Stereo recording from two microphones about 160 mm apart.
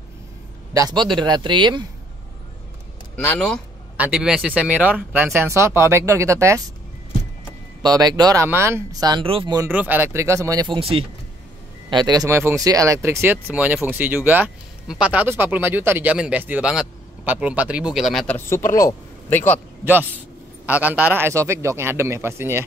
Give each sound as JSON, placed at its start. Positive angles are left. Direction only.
{"t": 0.7, "sound": "speech", "side_deg": -25}
{"t": 3.3, "sound": "speech", "side_deg": 5}
{"t": 3.9, "sound": "speech", "side_deg": -5}
{"t": 7.8, "sound": "speech", "side_deg": -25}
{"t": 9.6, "sound": "speech", "side_deg": -10}
{"t": 10.8, "sound": "speech", "side_deg": -35}
{"t": 11.9, "sound": "speech", "side_deg": -25}
{"t": 18.5, "sound": "speech", "side_deg": 15}
{"t": 19.8, "sound": "a man's voice", "side_deg": -10}